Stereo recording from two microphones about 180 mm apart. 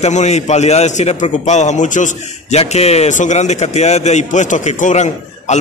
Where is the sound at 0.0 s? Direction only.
40° left (ahead or behind).